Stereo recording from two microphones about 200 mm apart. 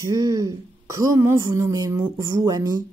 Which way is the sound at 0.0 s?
20° right (ahead or behind).